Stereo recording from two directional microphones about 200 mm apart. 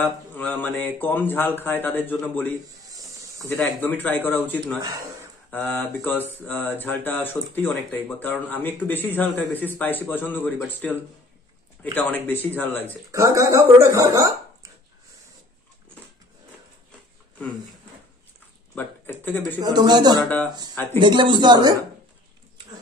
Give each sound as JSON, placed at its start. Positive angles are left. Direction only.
{"t": 0.3, "sound": "speech", "side_deg": 10}
{"t": 2.9, "sound": "snake", "side_deg": -15}
{"t": 3.3, "sound": "speech", "side_deg": 10}
{"t": 13.1, "sound": "speech", "side_deg": -15}
{"t": 18.8, "sound": "a man's voice", "side_deg": 10}
{"t": 19.6, "sound": "speech", "side_deg": -20}
{"t": 20.2, "sound": "speech", "side_deg": 5}
{"t": 21.0, "sound": "speech", "side_deg": -25}